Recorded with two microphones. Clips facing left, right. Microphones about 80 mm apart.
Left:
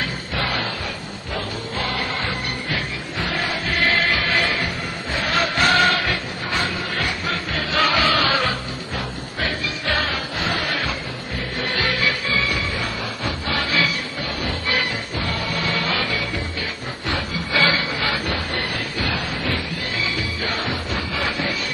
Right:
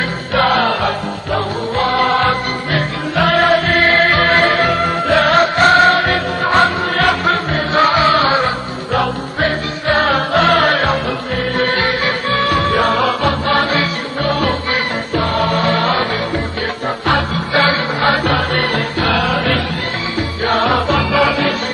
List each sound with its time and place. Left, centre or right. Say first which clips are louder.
0.3 s music: right 14 dB; right
6.0 s music: right 10 dB; right
7.5 s music: right 5 dB; right
9.8 s music: right 11 dB; right
12.4 s music: right 12 dB; right
15.4 s music: right 9 dB; right
17.6 s music: right 6 dB; right
20.4 s music: right 15 dB; right